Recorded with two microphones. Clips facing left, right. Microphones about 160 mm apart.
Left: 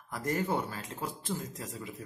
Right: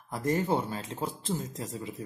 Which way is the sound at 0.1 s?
25° right (ahead or behind).